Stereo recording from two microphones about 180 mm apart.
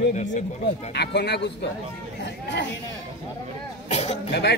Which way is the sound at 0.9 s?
65° left (ahead or behind).